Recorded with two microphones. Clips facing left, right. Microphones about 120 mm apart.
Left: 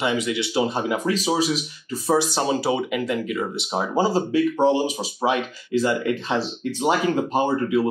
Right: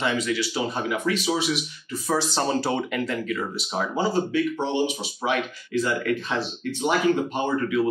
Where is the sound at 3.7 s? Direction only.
35° left (ahead or behind).